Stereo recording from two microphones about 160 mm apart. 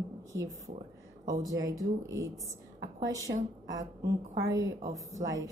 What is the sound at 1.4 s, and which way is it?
A woman's voice, 20° right (ahead or behind).